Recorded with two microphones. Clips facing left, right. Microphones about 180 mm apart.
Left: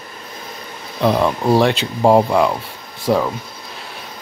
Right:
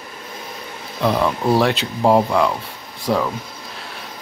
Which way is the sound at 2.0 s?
15° left (ahead or behind).